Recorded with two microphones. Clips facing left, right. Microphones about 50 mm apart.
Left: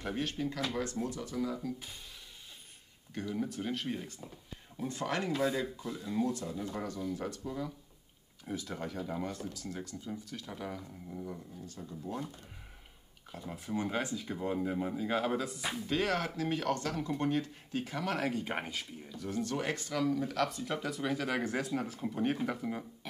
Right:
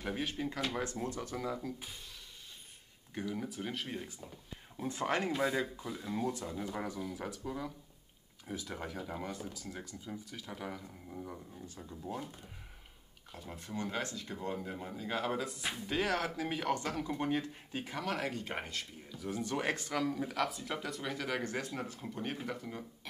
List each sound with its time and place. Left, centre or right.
0.2 s speech: centre; by 1.6 s right
3.3 s speech: centre
4.8 s speech: right
13.3 s speech: centre
13.7 s speech: centre
18.0 s speech: centre
18.4 s speech: centre
19.1 s speech: centre
19.4 s speech: centre
20.0 s speech: centre